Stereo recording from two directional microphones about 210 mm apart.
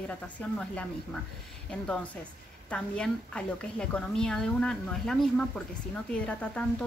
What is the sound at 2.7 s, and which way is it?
Speech, 5° left (ahead or behind).